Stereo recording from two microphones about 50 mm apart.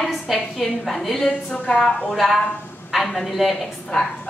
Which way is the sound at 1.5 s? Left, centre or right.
Centre.